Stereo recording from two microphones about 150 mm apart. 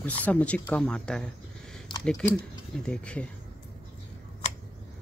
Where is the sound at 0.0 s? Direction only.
10° left (ahead or behind).